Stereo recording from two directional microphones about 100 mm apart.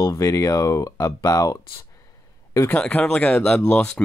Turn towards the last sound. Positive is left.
turn(degrees=10)  # may be behind; listen again after turning